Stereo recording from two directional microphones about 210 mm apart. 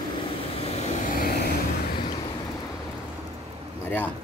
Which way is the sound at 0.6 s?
35° left (ahead or behind).